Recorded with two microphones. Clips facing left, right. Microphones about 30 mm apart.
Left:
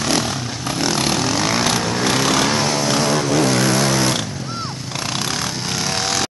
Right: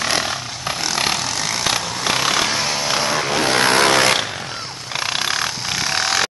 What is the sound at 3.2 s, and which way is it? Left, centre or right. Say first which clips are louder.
Vehicle: even; right.